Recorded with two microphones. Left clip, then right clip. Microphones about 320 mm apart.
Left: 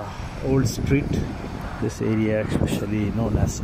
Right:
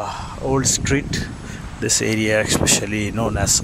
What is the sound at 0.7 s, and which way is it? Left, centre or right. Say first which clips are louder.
Speech: right 3 dB; right.